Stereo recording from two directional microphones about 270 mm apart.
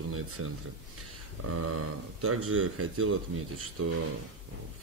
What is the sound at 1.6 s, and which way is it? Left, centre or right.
A man's voice, right.